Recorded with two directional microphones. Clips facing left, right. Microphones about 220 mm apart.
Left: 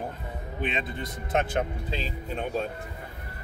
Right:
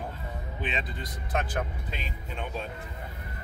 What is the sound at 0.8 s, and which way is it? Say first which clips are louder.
Speech: left 4 dB; 25° left (ahead or behind).